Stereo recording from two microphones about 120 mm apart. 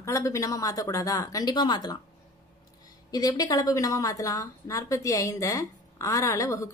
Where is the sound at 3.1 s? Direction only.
30° left (ahead or behind).